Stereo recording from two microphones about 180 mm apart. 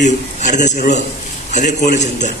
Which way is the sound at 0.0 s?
40° left (ahead or behind).